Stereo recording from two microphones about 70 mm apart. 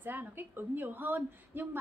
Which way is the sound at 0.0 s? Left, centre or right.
Right.